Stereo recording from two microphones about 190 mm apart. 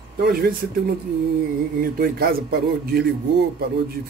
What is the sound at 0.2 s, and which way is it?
Speech, 55° right (ahead or behind).